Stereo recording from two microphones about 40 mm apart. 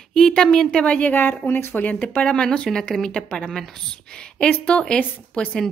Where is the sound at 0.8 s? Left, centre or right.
Left.